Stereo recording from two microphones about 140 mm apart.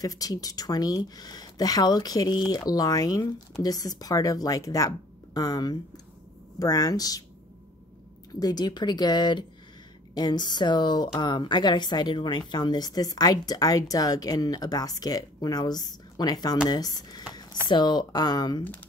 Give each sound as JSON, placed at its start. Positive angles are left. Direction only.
{"t": 0.0, "sound": "a woman's voice", "side_deg": 25}
{"t": 8.4, "sound": "a woman's voice", "side_deg": 30}
{"t": 17.3, "sound": "a sound", "side_deg": 30}
{"t": 17.6, "sound": "speech", "side_deg": 30}